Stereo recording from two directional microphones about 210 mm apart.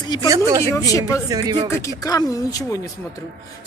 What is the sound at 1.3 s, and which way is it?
Speech, 20° right (ahead or behind).